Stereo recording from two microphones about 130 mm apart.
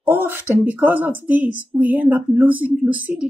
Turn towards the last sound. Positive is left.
turn(degrees=-10)  # may be behind; listen again after turning